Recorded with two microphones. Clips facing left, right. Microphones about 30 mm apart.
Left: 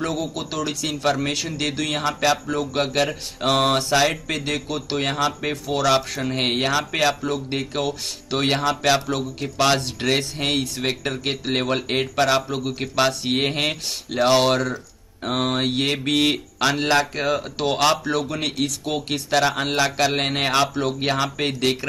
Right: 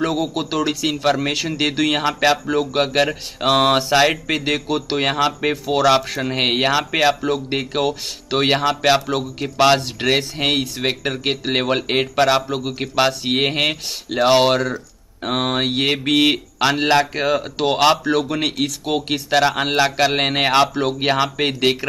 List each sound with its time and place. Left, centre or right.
0.0 s speech: centre